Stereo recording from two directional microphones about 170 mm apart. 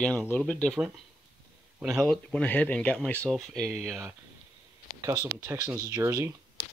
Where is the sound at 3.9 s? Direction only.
15° right (ahead or behind).